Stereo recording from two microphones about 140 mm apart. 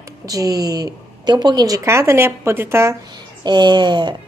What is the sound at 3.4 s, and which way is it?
Speech, 30° right (ahead or behind).